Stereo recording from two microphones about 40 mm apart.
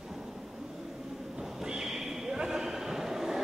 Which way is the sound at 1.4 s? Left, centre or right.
Centre.